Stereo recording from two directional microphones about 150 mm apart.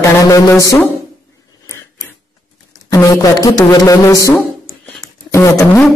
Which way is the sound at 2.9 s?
25° left (ahead or behind).